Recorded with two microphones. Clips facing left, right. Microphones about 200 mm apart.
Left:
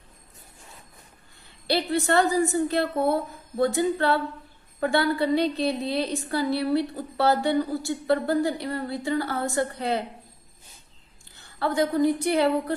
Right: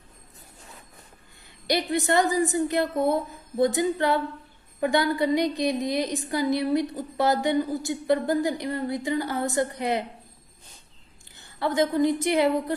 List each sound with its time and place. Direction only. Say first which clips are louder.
1.7 s a woman's voice: even; 15° right (ahead or behind)
11.6 s a woman's voice: even; 20° right (ahead or behind)